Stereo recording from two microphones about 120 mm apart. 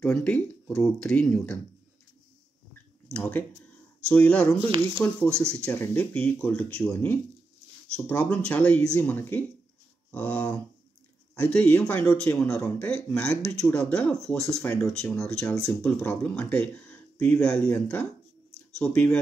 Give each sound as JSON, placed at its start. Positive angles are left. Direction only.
{"t": 0.0, "sound": "speech", "side_deg": 10}
{"t": 2.7, "sound": "a sound", "side_deg": 10}
{"t": 4.1, "sound": "speech", "side_deg": 10}
{"t": 4.6, "sound": "speech", "side_deg": -45}
{"t": 4.9, "sound": "speech", "side_deg": 10}